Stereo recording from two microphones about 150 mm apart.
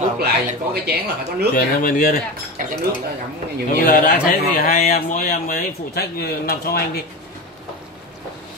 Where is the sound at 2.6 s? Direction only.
60° right (ahead or behind).